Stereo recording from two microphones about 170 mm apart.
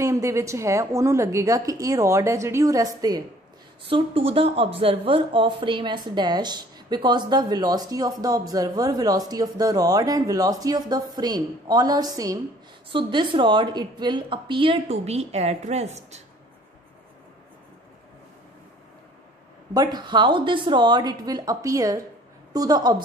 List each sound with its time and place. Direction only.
0.0 s a woman's voice: 15° right (ahead or behind)
3.9 s speech: 35° right (ahead or behind)
19.7 s speech: 25° right (ahead or behind)